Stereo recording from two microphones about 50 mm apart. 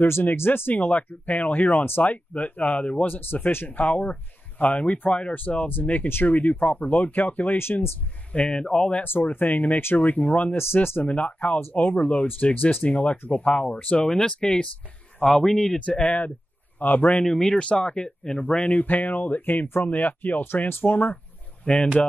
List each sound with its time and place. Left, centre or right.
0.0 s speech: left
0.7 s speech: left
3.1 s speech: left
3.6 s speech: left
8.3 s speech: left
9.0 s speech: left
10.6 s speech: left
11.0 s speech: left
15.4 s speech: centre
15.8 s speech: left
17.2 s speech: centre
18.7 s speech: left